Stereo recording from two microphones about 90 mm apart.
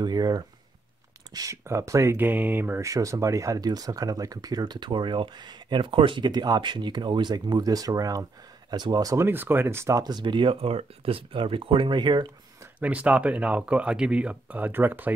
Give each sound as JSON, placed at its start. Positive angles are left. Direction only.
{"t": 0.0, "sound": "speech", "side_deg": -45}
{"t": 2.1, "sound": "speech", "side_deg": -20}
{"t": 2.8, "sound": "speech", "side_deg": -35}
{"t": 9.2, "sound": "speech", "side_deg": -25}
{"t": 10.0, "sound": "speech", "side_deg": -60}
{"t": 12.8, "sound": "speech", "side_deg": -15}